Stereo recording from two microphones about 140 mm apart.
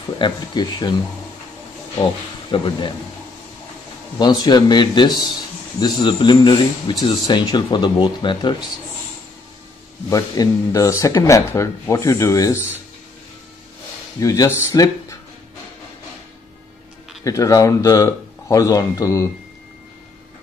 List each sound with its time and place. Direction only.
0.2 s a man's voice: 30° left (ahead or behind)
2.5 s a man's voice: 35° left (ahead or behind)
4.2 s a man's voice: 30° left (ahead or behind)
10.0 s speech: 25° left (ahead or behind)
14.2 s speech: 25° left (ahead or behind)
17.2 s speech: 25° left (ahead or behind)